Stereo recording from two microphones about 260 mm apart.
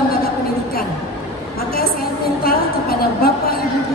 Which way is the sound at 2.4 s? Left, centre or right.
Left.